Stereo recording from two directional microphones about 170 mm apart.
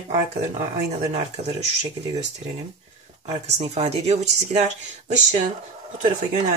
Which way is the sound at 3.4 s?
40° right (ahead or behind).